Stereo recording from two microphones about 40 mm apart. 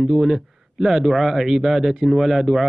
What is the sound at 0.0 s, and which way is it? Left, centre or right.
Speech, centre.